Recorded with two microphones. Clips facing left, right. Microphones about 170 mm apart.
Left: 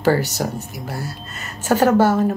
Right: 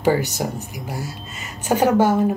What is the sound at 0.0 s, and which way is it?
Speech, 15° right (ahead or behind).